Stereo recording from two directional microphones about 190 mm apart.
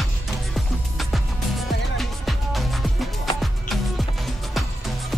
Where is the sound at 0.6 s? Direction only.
Centre (ahead or behind).